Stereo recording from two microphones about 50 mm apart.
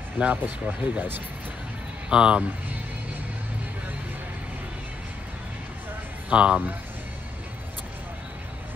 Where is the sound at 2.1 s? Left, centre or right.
Right.